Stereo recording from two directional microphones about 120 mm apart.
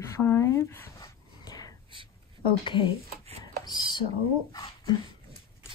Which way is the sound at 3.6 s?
35° left (ahead or behind).